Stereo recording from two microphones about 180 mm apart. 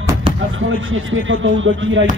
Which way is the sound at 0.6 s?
90° right.